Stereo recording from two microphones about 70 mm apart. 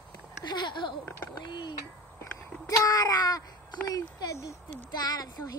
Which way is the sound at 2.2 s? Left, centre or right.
Left.